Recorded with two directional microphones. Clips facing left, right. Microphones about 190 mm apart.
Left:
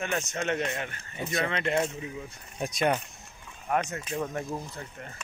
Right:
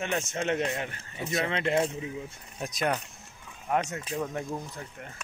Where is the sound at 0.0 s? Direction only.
25° right (ahead or behind).